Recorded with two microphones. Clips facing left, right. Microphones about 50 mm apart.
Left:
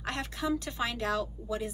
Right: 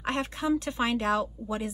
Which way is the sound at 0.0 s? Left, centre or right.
Right.